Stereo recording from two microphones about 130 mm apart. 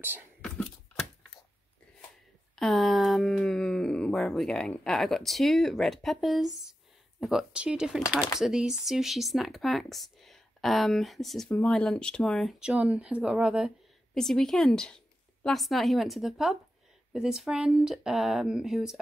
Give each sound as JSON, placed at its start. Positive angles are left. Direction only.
{"t": 2.5, "sound": "speech", "side_deg": 0}